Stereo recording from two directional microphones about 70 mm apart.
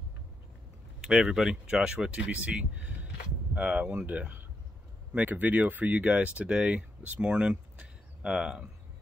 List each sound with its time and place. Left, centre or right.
1.0 s speech: centre